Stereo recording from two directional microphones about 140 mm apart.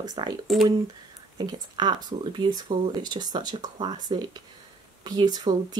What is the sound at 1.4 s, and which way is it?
Speech, 30° right (ahead or behind).